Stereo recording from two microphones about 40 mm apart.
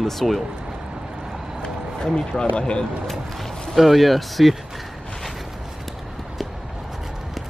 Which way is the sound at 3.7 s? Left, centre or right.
Centre.